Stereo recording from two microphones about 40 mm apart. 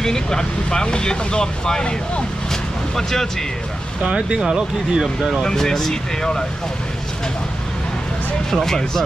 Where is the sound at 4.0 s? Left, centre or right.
Centre.